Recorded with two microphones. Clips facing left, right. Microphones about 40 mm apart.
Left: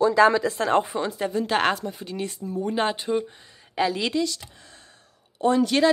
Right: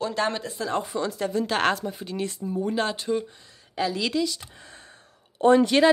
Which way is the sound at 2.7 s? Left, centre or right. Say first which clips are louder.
Left 3 dB; left.